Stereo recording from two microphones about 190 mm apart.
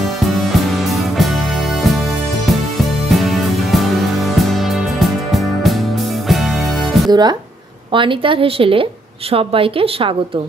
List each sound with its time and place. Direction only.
0.2 s music: centre (ahead or behind)
3.1 s music: centre (ahead or behind)
7.1 s a woman's voice: 20° right (ahead or behind)